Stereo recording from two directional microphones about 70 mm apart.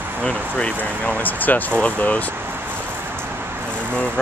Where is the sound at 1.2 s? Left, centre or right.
Left.